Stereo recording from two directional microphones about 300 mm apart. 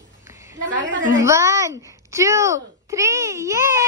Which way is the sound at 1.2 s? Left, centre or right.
Centre.